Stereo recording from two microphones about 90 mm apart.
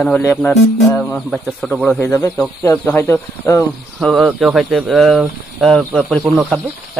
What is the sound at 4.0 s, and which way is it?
Speech, centre (ahead or behind).